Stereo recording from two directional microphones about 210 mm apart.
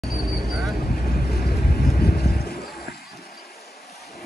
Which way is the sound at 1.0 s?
45° left (ahead or behind).